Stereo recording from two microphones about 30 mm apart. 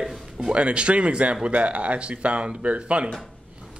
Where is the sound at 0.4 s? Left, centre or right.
Right.